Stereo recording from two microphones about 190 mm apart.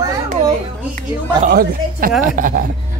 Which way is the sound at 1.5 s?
50° right (ahead or behind).